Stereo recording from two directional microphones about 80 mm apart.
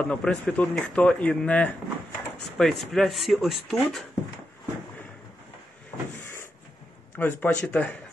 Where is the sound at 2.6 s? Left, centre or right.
Centre.